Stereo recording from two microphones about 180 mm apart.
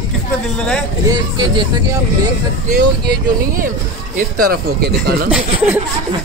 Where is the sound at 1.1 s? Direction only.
25° right (ahead or behind).